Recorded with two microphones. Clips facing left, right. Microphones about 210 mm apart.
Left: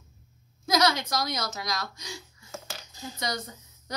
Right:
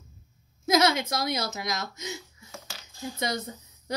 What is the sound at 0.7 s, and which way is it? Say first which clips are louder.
A woman's voice: right 2 dB; 25° right (ahead or behind).